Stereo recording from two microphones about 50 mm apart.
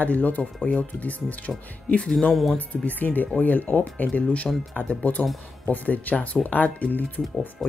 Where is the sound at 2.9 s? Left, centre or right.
Left.